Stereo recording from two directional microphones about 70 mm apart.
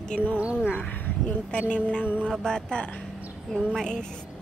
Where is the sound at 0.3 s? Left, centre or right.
Centre.